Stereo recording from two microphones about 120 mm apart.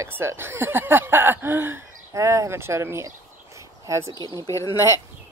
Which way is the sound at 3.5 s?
25° right (ahead or behind).